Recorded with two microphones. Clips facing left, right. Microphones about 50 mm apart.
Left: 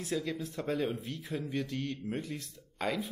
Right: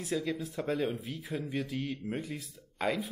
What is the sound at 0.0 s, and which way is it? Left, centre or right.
Speech, centre.